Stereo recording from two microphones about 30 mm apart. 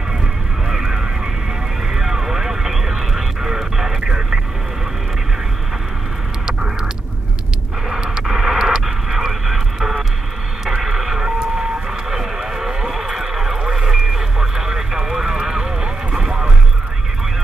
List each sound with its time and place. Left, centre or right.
0.7 s neigh: centre
2.0 s vehicle: centre
3.4 s music: centre
8.2 s radio: centre
8.8 s a sound: centre
10.8 s radio: centre
12.1 s a sound: centre
12.9 s vehicle: centre